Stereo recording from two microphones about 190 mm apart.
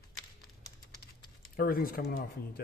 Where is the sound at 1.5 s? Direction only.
50° left (ahead or behind).